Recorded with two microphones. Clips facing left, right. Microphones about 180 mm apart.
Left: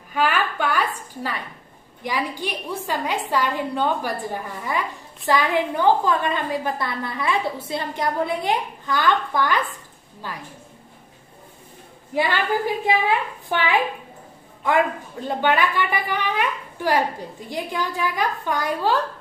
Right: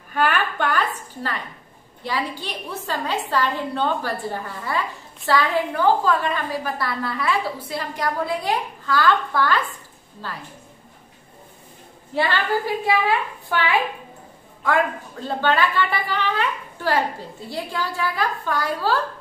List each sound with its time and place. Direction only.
0.1 s a sound: 10° left (ahead or behind)
2.0 s a woman's voice: 15° left (ahead or behind)
12.1 s a woman's voice: 15° left (ahead or behind)